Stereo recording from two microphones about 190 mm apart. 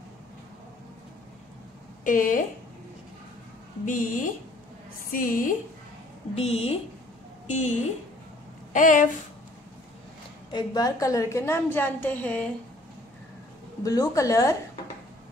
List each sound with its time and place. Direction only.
2.0 s speech: 45° left (ahead or behind)
3.8 s speech: 45° left (ahead or behind)
6.3 s a woman's voice: 35° left (ahead or behind)
10.5 s a woman's voice: 20° left (ahead or behind)
13.8 s a woman's voice: 20° left (ahead or behind)